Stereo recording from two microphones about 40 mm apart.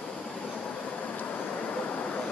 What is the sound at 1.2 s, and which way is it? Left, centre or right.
Vehicle, left.